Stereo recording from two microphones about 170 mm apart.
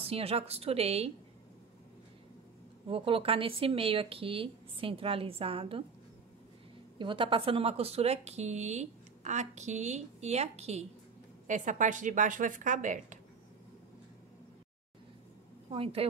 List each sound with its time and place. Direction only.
0.0 s a woman's voice: 35° right (ahead or behind)
2.9 s a woman's voice: 30° right (ahead or behind)
7.0 s a woman's voice: 30° right (ahead or behind); by 13.2 s 45° right (ahead or behind)
15.7 s a woman's voice: 35° right (ahead or behind)